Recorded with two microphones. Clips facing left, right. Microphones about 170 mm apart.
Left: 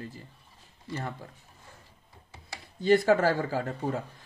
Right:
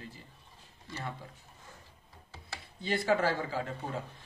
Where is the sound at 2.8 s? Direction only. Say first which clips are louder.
Left 7 dB; 45° left (ahead or behind).